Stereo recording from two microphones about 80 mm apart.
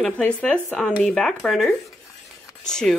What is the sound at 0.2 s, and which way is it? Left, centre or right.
Speech, centre.